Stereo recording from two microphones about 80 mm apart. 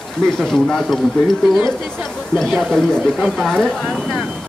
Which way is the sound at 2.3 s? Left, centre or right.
Centre.